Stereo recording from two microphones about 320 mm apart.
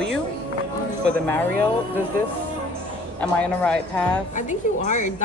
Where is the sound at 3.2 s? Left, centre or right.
Centre.